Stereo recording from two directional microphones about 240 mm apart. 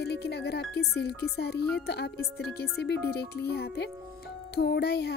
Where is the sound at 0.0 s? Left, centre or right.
Left.